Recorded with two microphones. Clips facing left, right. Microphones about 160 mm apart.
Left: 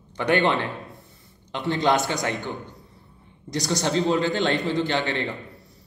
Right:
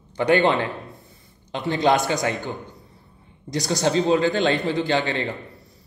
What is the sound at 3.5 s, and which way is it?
Speech, 15° right (ahead or behind).